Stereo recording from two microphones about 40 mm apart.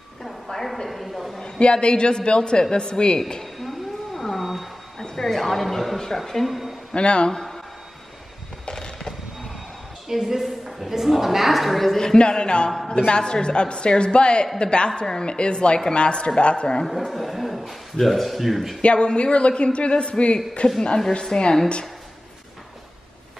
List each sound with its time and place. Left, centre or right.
0.2 s a sound: centre
1.4 s a man's voice: left
3.5 s a sound: centre
4.9 s a woman's voice: centre
6.9 s a man's voice: left
8.6 s fireworks: left
10.0 s a woman's voice: centre; by 16.8 s left
16.8 s a woman's voice: centre
18.8 s a man's voice: left